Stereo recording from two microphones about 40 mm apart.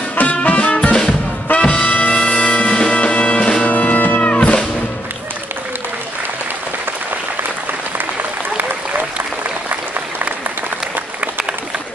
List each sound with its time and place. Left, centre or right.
0.1 s music: left
0.6 s music: left
1.9 s music: left
3.6 s music: left